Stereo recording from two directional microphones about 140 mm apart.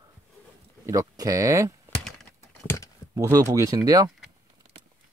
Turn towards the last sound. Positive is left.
turn(degrees=-25)  # may be behind; listen again after turning